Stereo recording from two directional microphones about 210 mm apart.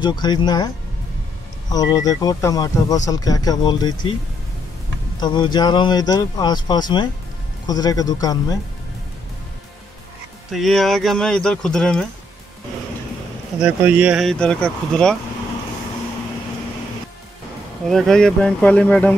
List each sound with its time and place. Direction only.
0.0 s speech: 20° left (ahead or behind)
1.7 s speech: 20° left (ahead or behind)
5.2 s speech: 20° left (ahead or behind)
10.5 s speech: centre (ahead or behind)
13.6 s speech: 5° right (ahead or behind)
17.8 s speech: centre (ahead or behind)